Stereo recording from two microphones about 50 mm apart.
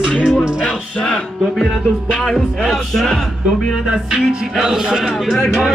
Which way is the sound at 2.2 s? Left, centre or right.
Centre.